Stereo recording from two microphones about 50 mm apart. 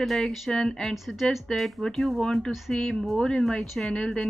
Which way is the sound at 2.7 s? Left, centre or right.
Centre.